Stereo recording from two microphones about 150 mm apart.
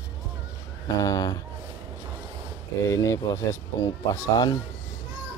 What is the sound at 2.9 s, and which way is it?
Speech, 20° left (ahead or behind).